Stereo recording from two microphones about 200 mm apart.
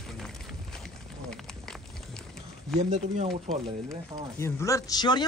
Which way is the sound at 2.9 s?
30° right (ahead or behind).